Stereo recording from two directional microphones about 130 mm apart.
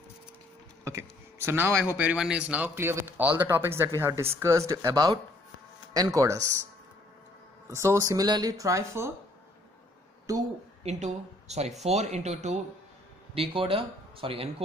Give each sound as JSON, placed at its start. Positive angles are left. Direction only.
{"t": 0.8, "sound": "speech", "side_deg": -20}
{"t": 7.6, "sound": "speech", "side_deg": -20}
{"t": 10.3, "sound": "speech", "side_deg": -25}
{"t": 10.8, "sound": "speech", "side_deg": -55}
{"t": 13.3, "sound": "speech", "side_deg": -45}